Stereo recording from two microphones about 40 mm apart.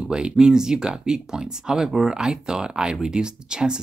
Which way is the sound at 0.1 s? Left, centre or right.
Right.